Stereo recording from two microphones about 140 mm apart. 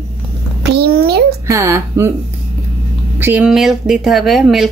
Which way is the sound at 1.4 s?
20° right (ahead or behind).